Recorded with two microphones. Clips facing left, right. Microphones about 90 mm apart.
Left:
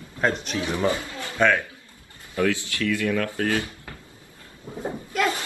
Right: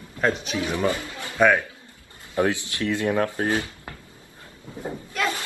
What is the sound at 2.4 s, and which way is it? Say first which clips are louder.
Speech: right 1 dB; 20° right (ahead or behind).